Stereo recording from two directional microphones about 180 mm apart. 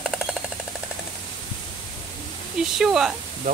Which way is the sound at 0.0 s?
5° left (ahead or behind).